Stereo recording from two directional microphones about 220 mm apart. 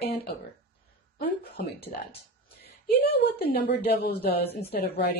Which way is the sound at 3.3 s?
45° left (ahead or behind).